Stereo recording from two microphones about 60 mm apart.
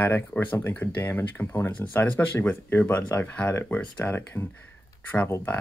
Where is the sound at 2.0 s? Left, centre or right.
Left.